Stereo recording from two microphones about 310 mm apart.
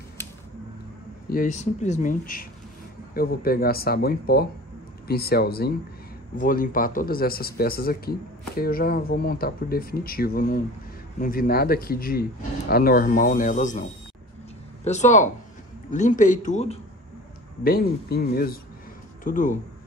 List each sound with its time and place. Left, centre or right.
1.3 s speech: left
14.9 s speech: left